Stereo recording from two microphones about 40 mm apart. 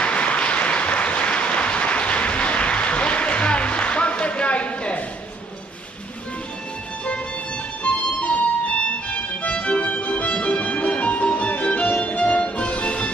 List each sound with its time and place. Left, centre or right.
0.0 s applause: left
7.8 s music: left